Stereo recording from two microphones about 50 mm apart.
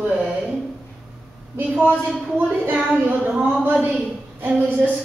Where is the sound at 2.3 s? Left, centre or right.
Right.